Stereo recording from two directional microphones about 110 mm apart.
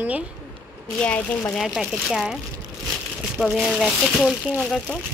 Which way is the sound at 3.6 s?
Centre (ahead or behind).